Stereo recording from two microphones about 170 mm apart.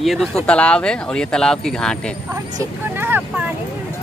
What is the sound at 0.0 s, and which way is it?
Speech, centre (ahead or behind).